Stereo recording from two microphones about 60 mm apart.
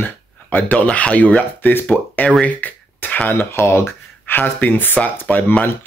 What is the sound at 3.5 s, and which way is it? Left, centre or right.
Speech, left.